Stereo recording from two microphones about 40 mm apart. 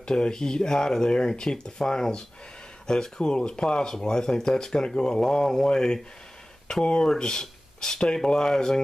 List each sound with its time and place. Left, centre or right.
0.0 s speech: left